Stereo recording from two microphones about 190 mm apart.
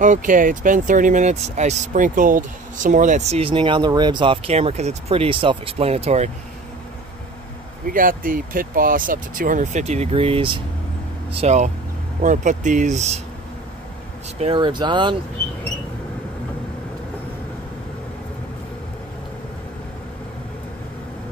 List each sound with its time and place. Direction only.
0.0 s speech: 45° right (ahead or behind)
7.9 s speech: 45° right (ahead or behind)
14.4 s speech: 25° right (ahead or behind)